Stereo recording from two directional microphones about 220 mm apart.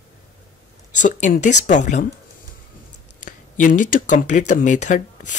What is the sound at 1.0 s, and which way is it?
Speech, 35° left (ahead or behind).